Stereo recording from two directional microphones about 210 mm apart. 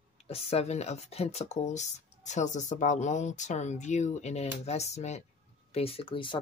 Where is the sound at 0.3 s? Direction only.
30° left (ahead or behind).